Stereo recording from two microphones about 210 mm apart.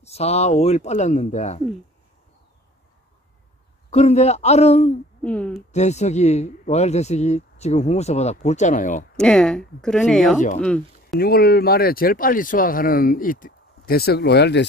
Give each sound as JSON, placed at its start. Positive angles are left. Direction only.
{"t": 0.0, "sound": "speech", "side_deg": 30}
{"t": 3.9, "sound": "speech", "side_deg": 30}
{"t": 5.2, "sound": "speech", "side_deg": 5}
{"t": 5.7, "sound": "speech", "side_deg": 35}
{"t": 9.1, "sound": "speech", "side_deg": 5}
{"t": 11.1, "sound": "speech", "side_deg": 45}